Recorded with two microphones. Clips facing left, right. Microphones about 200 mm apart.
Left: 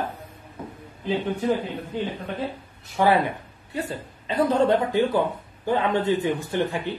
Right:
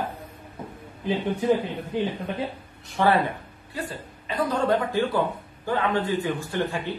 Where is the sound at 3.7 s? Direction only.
25° left (ahead or behind).